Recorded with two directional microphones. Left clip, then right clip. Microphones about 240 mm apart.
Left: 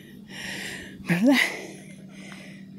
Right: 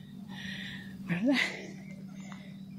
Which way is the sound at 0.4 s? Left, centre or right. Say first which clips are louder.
Left 8 dB; left.